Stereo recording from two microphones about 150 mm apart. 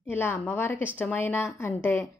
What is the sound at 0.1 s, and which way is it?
A woman's voice, 15° left (ahead or behind).